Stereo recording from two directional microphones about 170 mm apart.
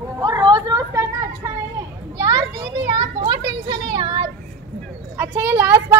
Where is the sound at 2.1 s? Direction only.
20° right (ahead or behind).